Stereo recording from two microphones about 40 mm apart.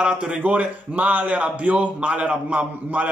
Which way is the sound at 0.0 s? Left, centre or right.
Right.